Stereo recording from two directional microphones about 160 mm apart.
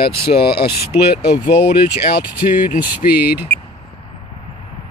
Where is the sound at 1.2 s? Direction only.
80° left.